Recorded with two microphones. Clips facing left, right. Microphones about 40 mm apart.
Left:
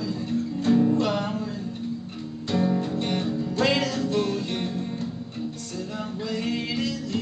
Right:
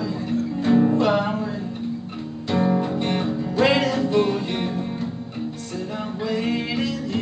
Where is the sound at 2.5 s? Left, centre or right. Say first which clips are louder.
Right 3 dB; right.